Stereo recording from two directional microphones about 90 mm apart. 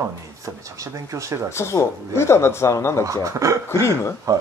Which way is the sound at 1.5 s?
30° left (ahead or behind).